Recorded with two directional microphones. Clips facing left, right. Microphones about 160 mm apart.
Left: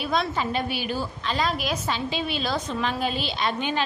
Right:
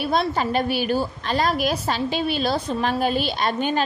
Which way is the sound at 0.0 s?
35° right (ahead or behind).